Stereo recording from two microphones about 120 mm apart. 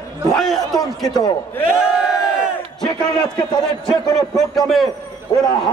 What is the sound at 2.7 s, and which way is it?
A man's voice, 5° left (ahead or behind).